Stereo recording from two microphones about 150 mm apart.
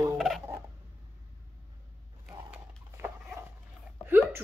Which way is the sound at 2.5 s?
15° right (ahead or behind).